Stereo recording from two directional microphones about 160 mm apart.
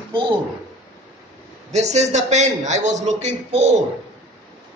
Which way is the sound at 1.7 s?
45° right (ahead or behind).